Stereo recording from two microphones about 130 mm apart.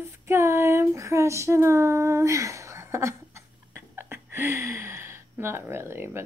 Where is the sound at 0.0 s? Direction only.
20° right (ahead or behind).